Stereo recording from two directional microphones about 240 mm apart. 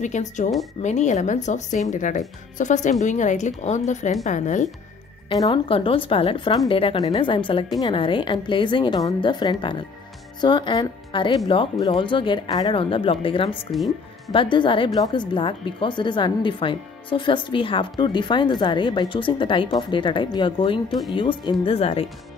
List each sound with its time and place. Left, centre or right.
0.0 s speech: left
5.3 s speech: centre
13.7 s speech: centre
14.3 s speech: centre